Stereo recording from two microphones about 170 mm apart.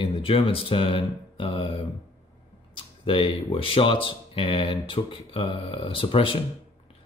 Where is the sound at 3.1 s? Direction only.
30° left (ahead or behind).